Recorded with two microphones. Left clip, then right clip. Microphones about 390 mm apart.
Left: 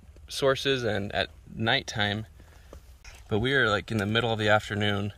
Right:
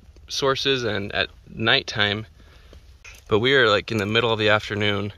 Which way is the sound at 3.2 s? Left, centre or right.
Centre.